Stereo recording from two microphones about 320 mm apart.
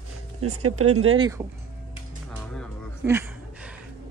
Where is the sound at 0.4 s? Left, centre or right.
Right.